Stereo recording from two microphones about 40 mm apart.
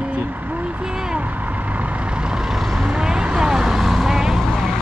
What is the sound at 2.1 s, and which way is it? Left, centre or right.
Vehicle, right.